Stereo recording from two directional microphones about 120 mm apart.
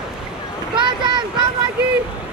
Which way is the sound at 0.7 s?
40° right (ahead or behind).